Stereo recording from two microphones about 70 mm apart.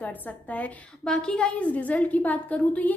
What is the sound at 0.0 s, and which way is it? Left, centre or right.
A woman's voice, left.